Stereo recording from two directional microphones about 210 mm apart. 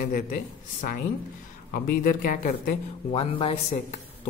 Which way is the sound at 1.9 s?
40° left (ahead or behind).